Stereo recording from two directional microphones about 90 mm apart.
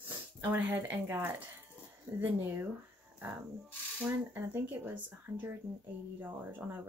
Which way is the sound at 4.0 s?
20° right (ahead or behind).